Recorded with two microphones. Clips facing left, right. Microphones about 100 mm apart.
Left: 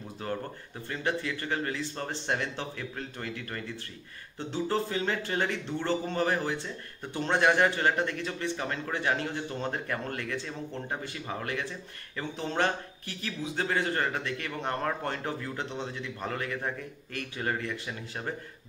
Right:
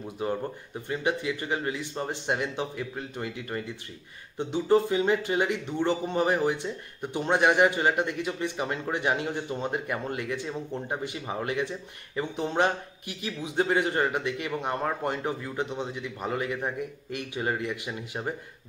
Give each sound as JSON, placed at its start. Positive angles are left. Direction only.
{"t": 0.2, "sound": "speech", "side_deg": -15}